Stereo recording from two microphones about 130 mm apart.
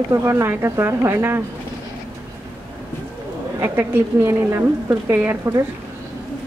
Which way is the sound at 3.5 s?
20° right (ahead or behind).